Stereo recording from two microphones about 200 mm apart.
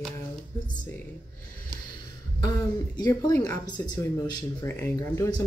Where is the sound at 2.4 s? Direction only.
20° left (ahead or behind).